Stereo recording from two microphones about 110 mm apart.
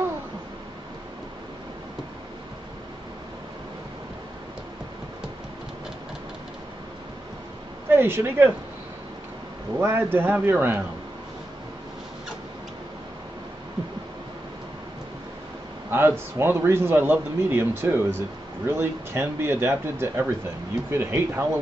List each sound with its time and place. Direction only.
7.9 s a man's voice: 20° right (ahead or behind)
9.8 s a man's voice: 20° right (ahead or behind)
15.9 s a man's voice: 20° right (ahead or behind)